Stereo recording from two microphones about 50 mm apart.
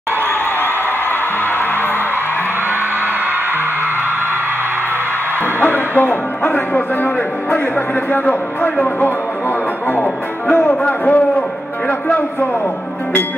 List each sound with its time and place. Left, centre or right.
5.6 s speech: left
8.1 s speech: left
10.5 s speech: left
11.1 s a sound: left